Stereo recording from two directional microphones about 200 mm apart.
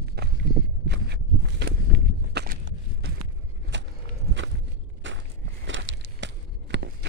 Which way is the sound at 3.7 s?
65° right (ahead or behind).